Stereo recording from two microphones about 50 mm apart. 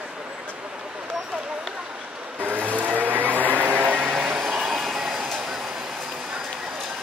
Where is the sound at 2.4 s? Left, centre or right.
Right.